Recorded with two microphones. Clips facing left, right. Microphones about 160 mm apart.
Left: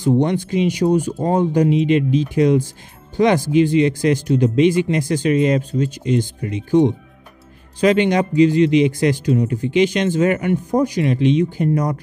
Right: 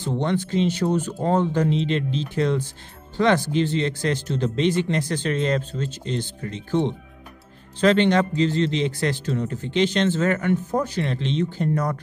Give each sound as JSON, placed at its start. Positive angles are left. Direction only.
{"t": 0.0, "sound": "a man's voice", "side_deg": 15}